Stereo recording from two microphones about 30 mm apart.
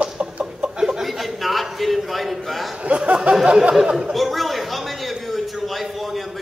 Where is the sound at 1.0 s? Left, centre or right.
Centre.